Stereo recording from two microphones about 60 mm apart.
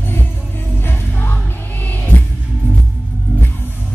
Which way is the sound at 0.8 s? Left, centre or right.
Left.